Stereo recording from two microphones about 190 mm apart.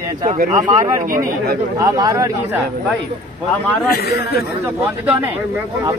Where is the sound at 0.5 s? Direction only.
15° right (ahead or behind).